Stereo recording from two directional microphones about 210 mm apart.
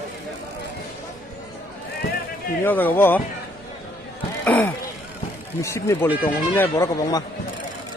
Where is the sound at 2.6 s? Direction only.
10° left (ahead or behind).